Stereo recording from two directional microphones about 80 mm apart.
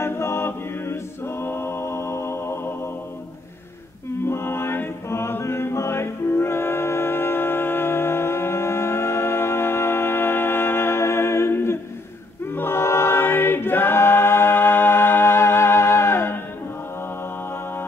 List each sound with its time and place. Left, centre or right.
0.0 s a capella: left
4.3 s mantra: left
12.4 s choir: left